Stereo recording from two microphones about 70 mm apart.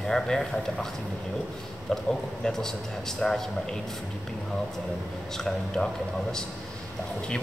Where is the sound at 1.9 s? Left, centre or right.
Centre.